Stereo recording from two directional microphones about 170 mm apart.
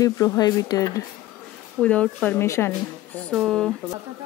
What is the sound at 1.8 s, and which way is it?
Speech, 5° left (ahead or behind).